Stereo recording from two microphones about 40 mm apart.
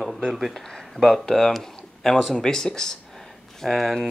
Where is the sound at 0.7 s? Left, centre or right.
Centre.